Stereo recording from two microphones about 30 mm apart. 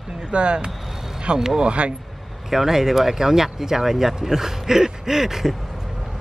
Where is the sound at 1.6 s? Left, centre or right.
Right.